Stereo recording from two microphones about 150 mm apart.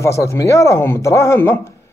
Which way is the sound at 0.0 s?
20° left (ahead or behind).